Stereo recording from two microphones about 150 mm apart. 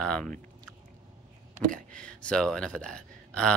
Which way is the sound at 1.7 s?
5° left (ahead or behind).